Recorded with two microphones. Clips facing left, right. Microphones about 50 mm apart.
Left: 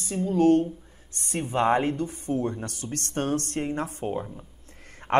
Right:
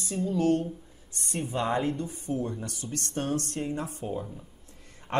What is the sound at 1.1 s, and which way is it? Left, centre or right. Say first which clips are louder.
A woman's voice: left 3 dB; left.